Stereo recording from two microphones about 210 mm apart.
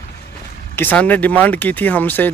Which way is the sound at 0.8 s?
10° left (ahead or behind).